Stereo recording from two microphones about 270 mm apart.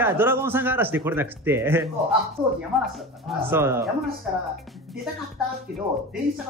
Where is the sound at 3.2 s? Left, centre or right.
Centre.